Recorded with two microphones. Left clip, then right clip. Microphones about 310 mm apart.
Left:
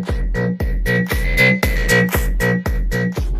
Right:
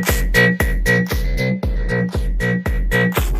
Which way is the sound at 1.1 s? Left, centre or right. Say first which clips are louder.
Left 8 dB; centre.